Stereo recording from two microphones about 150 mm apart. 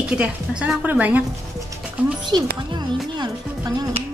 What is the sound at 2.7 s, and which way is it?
Speech, 30° right (ahead or behind).